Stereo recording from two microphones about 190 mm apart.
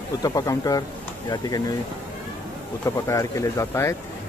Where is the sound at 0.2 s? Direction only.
20° left (ahead or behind).